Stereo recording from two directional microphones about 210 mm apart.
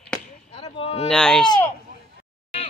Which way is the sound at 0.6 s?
25° left (ahead or behind).